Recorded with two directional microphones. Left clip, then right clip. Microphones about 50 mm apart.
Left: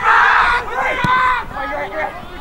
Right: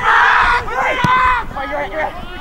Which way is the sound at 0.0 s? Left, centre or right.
Centre.